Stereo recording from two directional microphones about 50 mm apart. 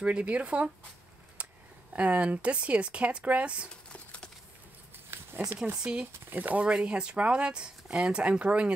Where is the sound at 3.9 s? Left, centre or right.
Left.